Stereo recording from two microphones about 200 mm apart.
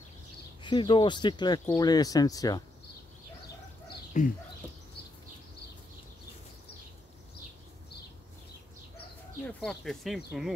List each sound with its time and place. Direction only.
0.6 s speech: 25° left (ahead or behind)
4.1 s speech: 40° left (ahead or behind)
9.4 s speech: 5° left (ahead or behind)